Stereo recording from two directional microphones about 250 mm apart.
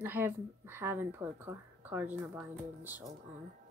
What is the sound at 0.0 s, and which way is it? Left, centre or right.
Speech, centre.